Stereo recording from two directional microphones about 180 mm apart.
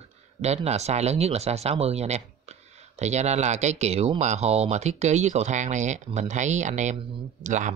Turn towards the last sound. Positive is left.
turn(degrees=-45)  # may be behind; listen again after turning